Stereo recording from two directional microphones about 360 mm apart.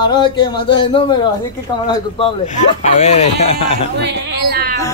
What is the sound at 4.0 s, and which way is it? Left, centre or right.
Speech, right.